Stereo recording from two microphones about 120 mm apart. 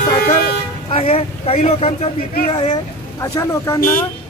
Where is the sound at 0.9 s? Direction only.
55° left (ahead or behind).